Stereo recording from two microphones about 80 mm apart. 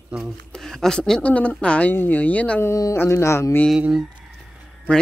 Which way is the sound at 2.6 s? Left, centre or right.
Left.